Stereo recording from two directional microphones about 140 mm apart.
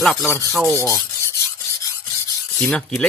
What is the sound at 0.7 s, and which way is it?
Speech, 20° left (ahead or behind).